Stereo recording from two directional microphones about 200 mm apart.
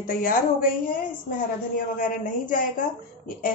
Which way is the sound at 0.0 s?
45° left (ahead or behind).